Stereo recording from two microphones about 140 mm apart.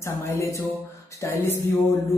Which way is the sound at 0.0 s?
20° left (ahead or behind).